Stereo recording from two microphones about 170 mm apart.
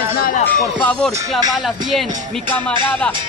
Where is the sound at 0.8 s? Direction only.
5° left (ahead or behind).